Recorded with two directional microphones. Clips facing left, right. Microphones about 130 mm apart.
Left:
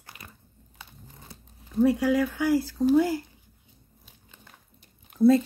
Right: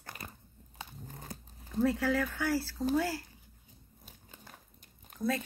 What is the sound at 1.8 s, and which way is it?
Speech, 15° left (ahead or behind).